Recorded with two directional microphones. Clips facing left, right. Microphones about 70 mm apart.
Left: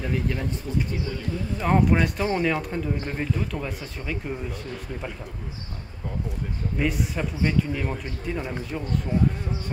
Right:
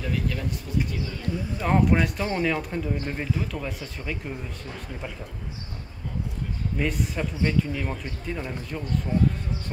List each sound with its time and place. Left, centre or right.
0.0 s speech: left
1.6 s speech: centre
6.8 s speech: centre